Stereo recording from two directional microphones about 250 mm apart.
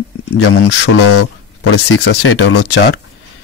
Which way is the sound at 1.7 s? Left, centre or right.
Left.